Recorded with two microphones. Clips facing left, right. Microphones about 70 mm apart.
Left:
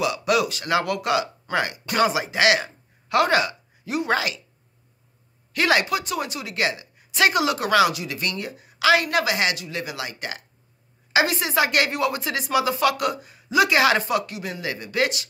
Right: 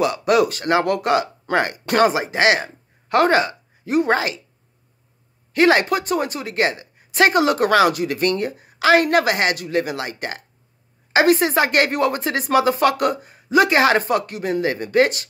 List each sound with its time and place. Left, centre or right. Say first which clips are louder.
0.0 s speech: right 5 dB; right
5.5 s a woman's voice: right 5 dB; right